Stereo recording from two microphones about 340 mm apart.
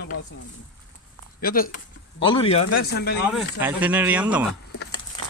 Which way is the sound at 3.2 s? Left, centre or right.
Centre.